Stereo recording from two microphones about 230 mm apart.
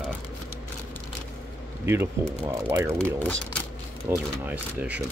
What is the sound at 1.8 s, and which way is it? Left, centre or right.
Speech, centre.